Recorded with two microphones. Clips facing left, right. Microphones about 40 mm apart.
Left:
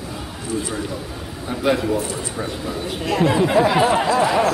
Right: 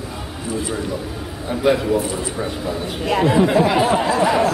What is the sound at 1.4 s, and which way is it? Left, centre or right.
A man's voice, centre.